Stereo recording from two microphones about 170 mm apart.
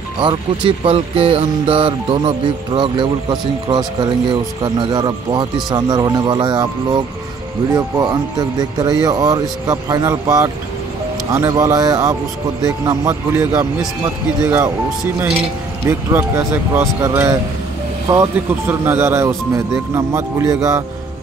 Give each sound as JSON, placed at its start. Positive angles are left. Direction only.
{"t": 0.2, "sound": "speech", "side_deg": -30}
{"t": 15.9, "sound": "speech", "side_deg": -15}